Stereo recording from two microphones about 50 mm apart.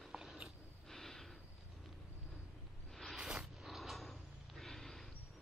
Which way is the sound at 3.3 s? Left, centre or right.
Centre.